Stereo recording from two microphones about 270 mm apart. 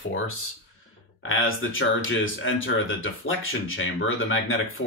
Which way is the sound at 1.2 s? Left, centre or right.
Left.